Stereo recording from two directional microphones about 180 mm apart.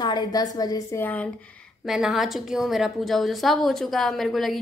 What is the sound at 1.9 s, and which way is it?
A woman's voice, 5° right (ahead or behind).